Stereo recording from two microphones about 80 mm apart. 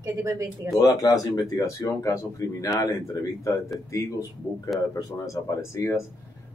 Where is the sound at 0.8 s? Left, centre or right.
Left.